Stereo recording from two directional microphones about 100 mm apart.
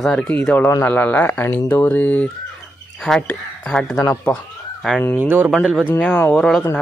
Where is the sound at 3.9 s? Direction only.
35° left (ahead or behind).